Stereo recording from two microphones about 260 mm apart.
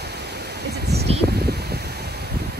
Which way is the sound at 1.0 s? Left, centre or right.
Right.